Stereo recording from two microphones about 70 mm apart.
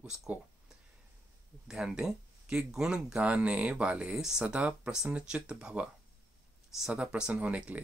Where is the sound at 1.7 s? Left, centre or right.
Centre.